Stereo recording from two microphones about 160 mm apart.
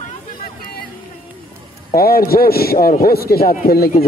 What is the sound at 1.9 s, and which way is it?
A man's voice, 70° left (ahead or behind).